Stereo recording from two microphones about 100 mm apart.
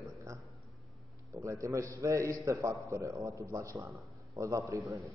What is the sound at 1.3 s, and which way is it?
A man's voice, 30° right (ahead or behind).